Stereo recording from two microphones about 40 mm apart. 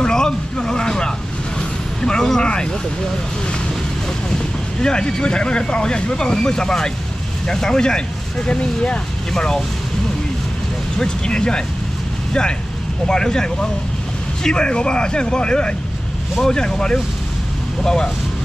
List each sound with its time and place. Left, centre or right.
0.0 s a sound: centre
2.0 s vehicle: centre
4.8 s speech: centre
8.5 s speech: left
9.3 s speech: centre
11.0 s speech: centre
13.0 s speech: centre
16.3 s speech: centre